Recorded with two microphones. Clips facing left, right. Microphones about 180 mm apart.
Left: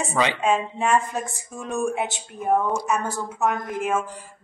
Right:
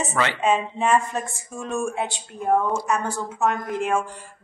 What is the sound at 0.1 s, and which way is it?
Speech, 15° left (ahead or behind).